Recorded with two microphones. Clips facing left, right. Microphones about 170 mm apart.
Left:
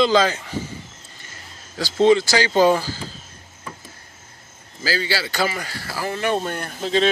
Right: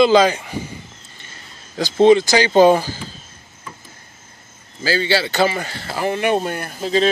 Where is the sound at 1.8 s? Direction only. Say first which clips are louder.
Right 4 dB; 20° right (ahead or behind).